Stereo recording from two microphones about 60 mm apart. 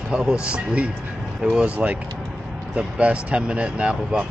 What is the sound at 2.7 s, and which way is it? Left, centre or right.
Speech, centre.